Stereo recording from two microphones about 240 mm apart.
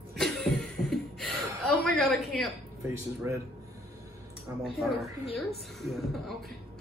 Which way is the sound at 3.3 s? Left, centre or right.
Centre.